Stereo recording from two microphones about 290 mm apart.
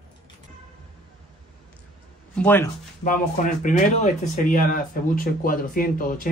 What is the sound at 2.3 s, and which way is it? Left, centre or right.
Speech, centre.